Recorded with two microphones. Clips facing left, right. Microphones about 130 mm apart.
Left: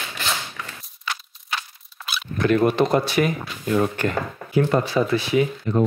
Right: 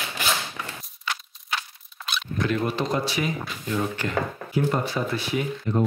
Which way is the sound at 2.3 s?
60° left (ahead or behind).